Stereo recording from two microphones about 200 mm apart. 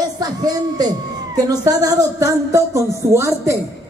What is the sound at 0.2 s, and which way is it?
A man's voice, 20° right (ahead or behind).